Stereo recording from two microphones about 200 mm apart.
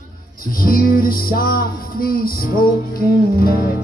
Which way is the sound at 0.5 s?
45° left (ahead or behind).